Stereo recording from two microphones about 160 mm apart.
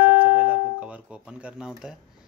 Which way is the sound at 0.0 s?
10° right (ahead or behind).